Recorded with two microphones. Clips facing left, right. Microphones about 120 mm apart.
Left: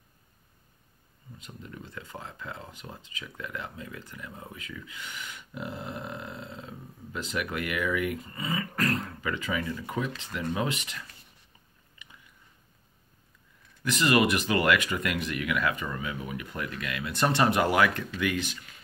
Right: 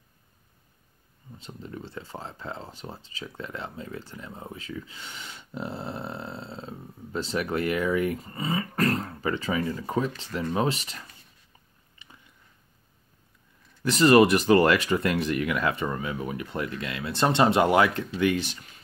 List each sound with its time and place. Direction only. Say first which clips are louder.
1.4 s speech: right 5 dB; 30° right (ahead or behind)
12.0 s a sound: right 1 dB; 30° right (ahead or behind)
13.8 s speech: right 6 dB; 35° right (ahead or behind)